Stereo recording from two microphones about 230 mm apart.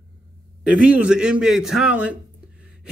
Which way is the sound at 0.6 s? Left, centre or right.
Centre.